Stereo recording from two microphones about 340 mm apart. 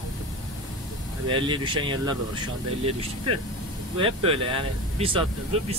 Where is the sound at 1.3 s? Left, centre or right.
Centre.